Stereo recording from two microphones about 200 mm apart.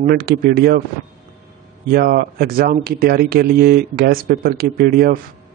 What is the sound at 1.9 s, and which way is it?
Speech, 50° right (ahead or behind).